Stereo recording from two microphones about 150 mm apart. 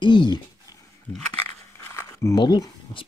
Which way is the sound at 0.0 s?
30° left (ahead or behind).